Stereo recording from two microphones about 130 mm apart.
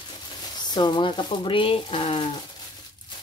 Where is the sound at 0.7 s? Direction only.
35° left (ahead or behind).